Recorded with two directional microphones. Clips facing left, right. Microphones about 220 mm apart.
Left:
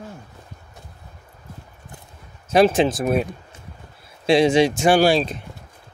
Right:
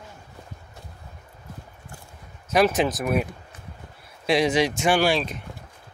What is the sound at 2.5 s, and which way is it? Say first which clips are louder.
Speech: left 4 dB; 30° left (ahead or behind).